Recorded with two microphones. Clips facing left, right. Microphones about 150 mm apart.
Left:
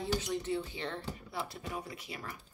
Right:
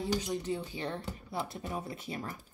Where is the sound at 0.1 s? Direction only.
15° right (ahead or behind); by 2.3 s 30° right (ahead or behind).